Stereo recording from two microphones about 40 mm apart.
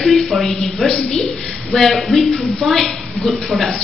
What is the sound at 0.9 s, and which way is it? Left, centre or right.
Speech, left.